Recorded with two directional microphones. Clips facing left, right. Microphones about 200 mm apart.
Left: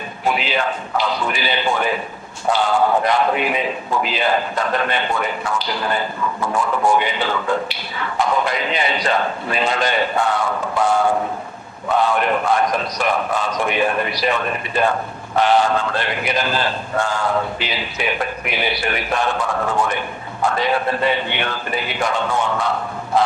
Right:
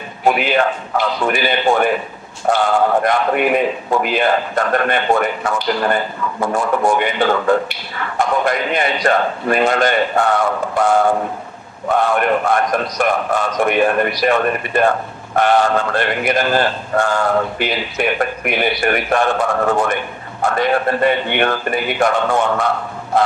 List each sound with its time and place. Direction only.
0.3 s speech: 55° right (ahead or behind)
6.5 s speech: 55° right (ahead or behind)